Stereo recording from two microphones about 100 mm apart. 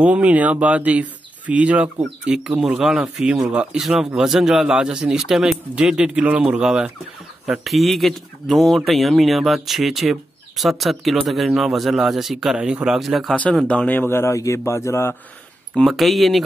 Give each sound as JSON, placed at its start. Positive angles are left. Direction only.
{"t": 0.0, "sound": "a man's voice", "side_deg": -15}
{"t": 13.4, "sound": "a man's voice", "side_deg": 10}
{"t": 15.7, "sound": "speech", "side_deg": 0}